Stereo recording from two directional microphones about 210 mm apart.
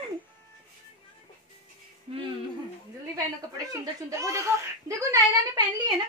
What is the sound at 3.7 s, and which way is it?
Speech, 15° right (ahead or behind).